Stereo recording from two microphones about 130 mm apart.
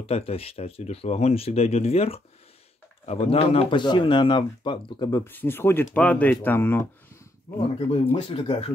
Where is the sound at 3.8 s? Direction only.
35° left (ahead or behind).